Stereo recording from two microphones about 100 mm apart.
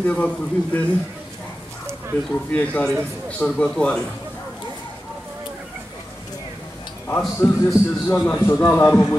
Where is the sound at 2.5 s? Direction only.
15° left (ahead or behind).